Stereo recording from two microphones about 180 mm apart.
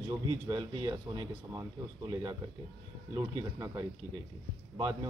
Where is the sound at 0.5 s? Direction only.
20° right (ahead or behind).